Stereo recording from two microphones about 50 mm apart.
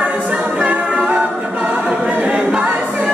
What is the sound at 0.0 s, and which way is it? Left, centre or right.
A capella, right.